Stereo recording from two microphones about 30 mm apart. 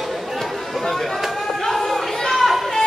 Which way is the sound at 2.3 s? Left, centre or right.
Centre.